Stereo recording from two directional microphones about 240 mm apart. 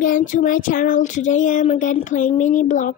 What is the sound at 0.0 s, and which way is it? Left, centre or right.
Child singing, left.